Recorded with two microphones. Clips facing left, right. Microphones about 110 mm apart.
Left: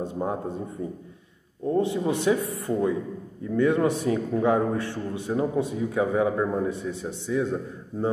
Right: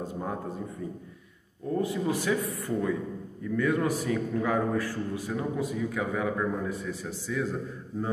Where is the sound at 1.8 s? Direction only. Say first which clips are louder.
Left 3 dB; 25° left (ahead or behind).